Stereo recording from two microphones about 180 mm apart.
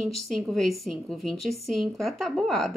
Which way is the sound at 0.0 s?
Centre (ahead or behind).